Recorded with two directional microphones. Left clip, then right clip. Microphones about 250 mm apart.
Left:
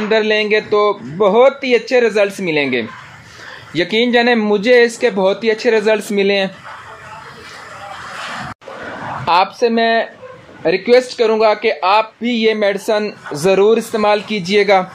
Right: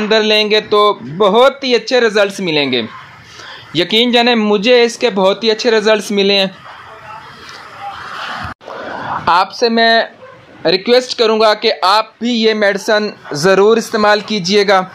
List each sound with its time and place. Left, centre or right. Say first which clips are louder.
0.1 s speech: right 2 dB; right
9.2 s speech: right 1 dB; right